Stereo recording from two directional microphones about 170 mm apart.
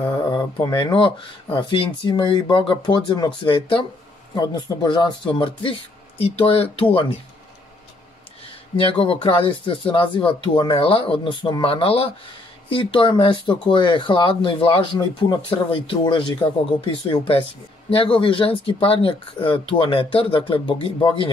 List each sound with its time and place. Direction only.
0.3 s speech: 25° left (ahead or behind)
8.7 s speech: 30° left (ahead or behind)